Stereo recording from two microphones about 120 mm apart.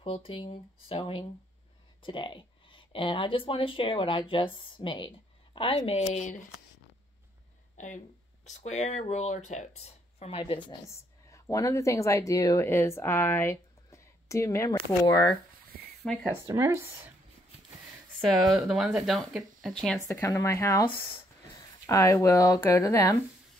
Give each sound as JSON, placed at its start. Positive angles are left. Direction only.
{"t": 0.0, "sound": "speech", "side_deg": 50}
{"t": 7.7, "sound": "a sound", "side_deg": 90}
{"t": 8.5, "sound": "speech", "side_deg": 75}
{"t": 11.2, "sound": "speech", "side_deg": 25}
{"t": 16.0, "sound": "speech", "side_deg": 5}
{"t": 16.4, "sound": "speech", "side_deg": -20}
{"t": 18.6, "sound": "speech", "side_deg": -5}
{"t": 20.1, "sound": "speech", "side_deg": 25}